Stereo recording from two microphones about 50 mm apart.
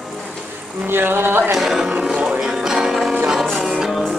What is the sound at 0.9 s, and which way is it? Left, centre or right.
Music, right.